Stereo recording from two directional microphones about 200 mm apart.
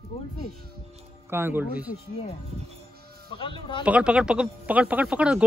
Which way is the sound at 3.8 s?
5° right (ahead or behind).